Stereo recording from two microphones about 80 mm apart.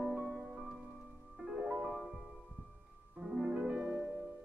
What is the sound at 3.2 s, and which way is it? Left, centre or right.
Music, centre.